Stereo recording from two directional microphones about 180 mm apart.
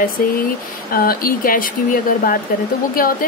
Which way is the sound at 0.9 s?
55° left (ahead or behind).